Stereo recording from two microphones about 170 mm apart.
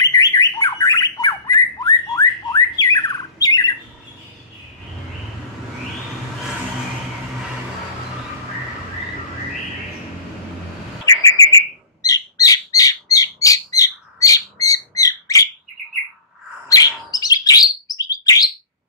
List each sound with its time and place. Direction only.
0.0 s bird: 20° left (ahead or behind)
3.4 s squawk: 20° left (ahead or behind)
11.1 s bird: 20° left (ahead or behind)
16.6 s bird: 20° left (ahead or behind)